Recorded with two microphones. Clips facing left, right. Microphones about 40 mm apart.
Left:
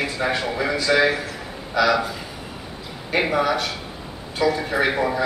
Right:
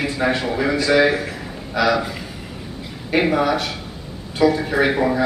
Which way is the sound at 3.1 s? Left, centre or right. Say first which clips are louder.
Right 3 dB; centre.